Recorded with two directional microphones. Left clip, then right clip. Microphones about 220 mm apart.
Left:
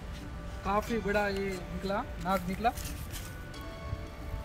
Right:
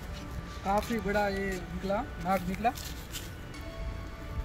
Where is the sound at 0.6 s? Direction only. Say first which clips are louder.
Right 1 dB; centre (ahead or behind).